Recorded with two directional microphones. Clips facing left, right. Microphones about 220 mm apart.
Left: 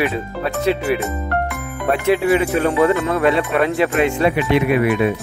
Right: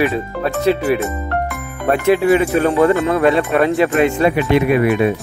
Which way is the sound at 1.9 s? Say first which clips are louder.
Right 3 dB; 50° right (ahead or behind).